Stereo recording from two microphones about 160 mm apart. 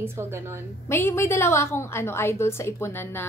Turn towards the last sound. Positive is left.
turn(degrees=15)  # may be behind; listen again after turning